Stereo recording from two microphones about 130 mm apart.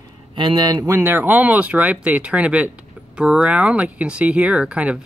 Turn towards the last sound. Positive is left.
turn(degrees=-10)  # may be behind; listen again after turning